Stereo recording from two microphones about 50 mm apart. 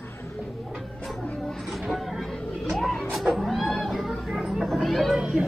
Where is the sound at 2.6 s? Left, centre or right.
Centre.